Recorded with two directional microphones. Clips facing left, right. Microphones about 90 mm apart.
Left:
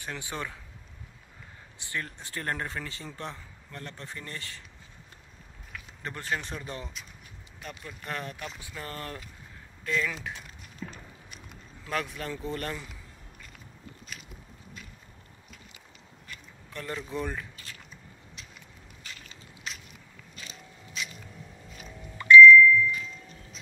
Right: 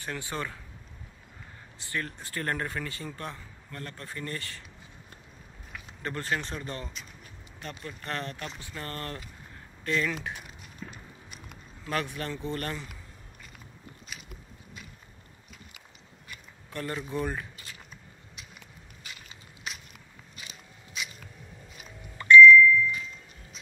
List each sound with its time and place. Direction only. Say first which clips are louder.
0.0 s speech: right 2 dB; 15° left (ahead or behind)
1.8 s speech: right 2 dB; 20° left (ahead or behind)
6.0 s speech: right 2 dB; 15° left (ahead or behind); by 10.3 s centre (ahead or behind)
10.3 s a sound: right 1 dB; 10° right (ahead or behind)
11.9 s speech: right 1 dB; centre (ahead or behind)
14.1 s walk: right 1 dB; 5° right (ahead or behind)
16.3 s a sound: even; 5° right (ahead or behind)
19.0 s crushing: even; 10° right (ahead or behind)
20.3 s biting: left 2 dB; 5° right (ahead or behind)
21.7 s a sound: left 2 dB; 5° right (ahead or behind)